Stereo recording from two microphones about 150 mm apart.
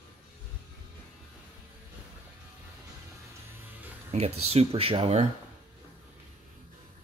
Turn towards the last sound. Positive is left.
turn(degrees=-40)  # may be behind; listen again after turning